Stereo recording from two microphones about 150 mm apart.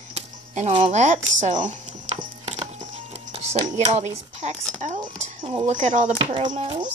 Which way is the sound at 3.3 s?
45° right (ahead or behind).